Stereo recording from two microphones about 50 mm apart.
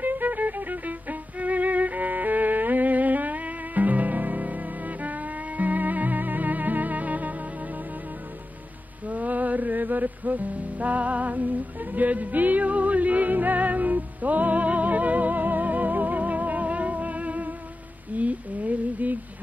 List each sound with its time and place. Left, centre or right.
0.0 s violin: right
9.0 s music: right
18.1 s a sound: right